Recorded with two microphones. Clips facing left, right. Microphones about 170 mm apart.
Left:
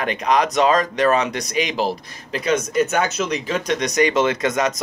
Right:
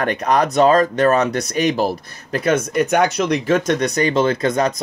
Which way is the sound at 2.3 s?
50° right (ahead or behind).